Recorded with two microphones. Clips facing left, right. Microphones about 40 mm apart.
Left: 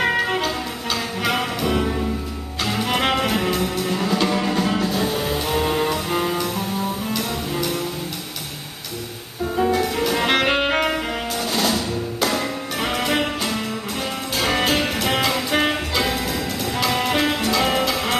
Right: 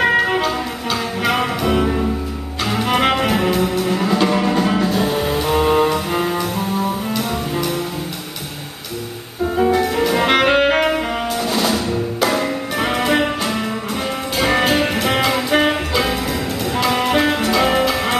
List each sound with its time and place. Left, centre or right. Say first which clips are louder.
0.0 s music: right 5 dB; centre
9.6 s music: right 4 dB; centre